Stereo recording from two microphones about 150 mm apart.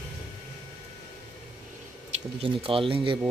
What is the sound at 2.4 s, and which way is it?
Speech, 35° right (ahead or behind).